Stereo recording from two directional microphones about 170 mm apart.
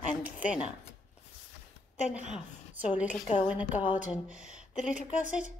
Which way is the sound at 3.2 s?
30° left (ahead or behind).